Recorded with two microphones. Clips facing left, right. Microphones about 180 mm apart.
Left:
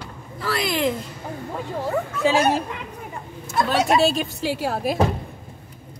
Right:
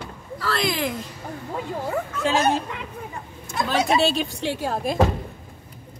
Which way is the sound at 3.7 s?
Centre (ahead or behind).